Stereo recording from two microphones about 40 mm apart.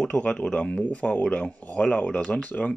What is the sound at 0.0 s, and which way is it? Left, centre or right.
Speech, left.